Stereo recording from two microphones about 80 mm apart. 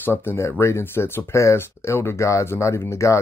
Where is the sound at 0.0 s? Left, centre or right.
Left.